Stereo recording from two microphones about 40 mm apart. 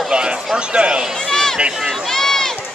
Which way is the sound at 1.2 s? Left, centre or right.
Centre.